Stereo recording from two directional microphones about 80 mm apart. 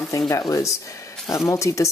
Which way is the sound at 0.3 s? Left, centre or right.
Left.